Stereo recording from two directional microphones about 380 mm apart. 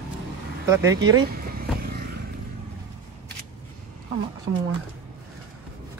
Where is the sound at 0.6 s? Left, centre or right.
Centre.